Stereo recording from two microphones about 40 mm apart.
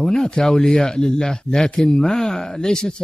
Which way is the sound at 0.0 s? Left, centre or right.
Centre.